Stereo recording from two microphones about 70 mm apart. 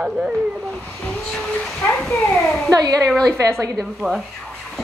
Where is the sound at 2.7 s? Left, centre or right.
Right.